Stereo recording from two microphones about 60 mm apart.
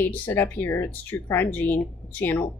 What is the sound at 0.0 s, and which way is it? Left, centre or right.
A woman's voice, left.